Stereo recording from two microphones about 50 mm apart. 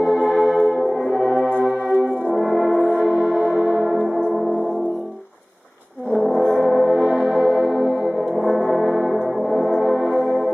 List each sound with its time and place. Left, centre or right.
0.0 s bell: centre
1.1 s music: centre
2.3 s brass instrument: centre
3.0 s music: centre
3.8 s gong: centre
6.1 s brass instrument: centre
7.1 s music: centre
7.5 s music: centre